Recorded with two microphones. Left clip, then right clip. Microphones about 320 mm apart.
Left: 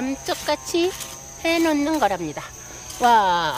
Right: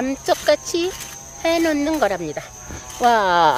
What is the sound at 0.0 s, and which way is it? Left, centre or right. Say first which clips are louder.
Speech: right 7 dB; centre.